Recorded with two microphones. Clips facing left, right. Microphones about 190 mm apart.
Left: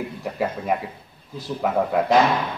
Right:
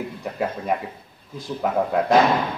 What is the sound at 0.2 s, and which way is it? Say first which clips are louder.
A man's voice: left 1 dB; 5° left (ahead or behind).